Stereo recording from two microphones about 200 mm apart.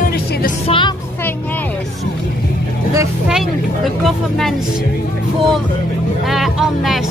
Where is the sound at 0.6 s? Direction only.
25° left (ahead or behind).